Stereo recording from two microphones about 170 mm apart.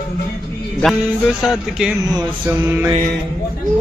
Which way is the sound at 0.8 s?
Centre (ahead or behind).